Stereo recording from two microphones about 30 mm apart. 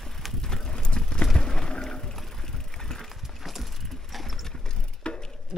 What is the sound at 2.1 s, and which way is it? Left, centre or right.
Vehicle, centre.